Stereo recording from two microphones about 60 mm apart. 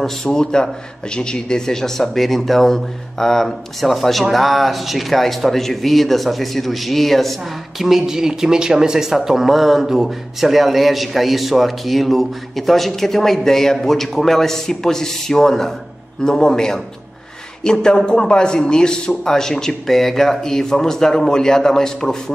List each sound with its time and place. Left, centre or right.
0.0 s a man's voice: centre